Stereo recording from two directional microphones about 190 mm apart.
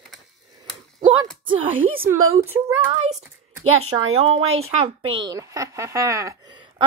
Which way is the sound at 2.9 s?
35° right (ahead or behind).